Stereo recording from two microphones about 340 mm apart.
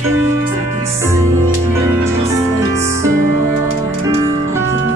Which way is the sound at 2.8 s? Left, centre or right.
Centre.